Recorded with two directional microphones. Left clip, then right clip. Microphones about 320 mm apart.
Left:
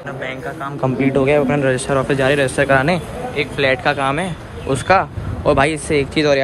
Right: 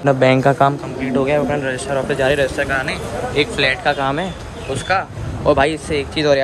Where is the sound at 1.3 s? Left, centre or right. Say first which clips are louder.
Left 3 dB; centre.